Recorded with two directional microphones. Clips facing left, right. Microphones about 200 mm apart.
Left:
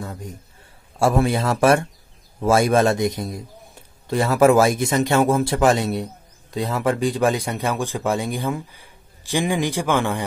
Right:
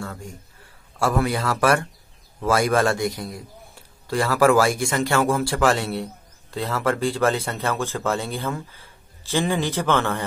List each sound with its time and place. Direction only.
0.0 s a man's voice: 20° left (ahead or behind)